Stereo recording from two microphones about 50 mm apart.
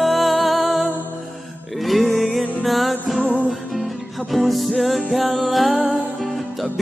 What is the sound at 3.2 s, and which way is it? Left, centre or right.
Music, left.